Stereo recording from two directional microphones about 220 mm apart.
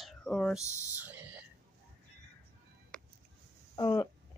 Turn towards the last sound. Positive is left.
turn(degrees=20)  # may be behind; listen again after turning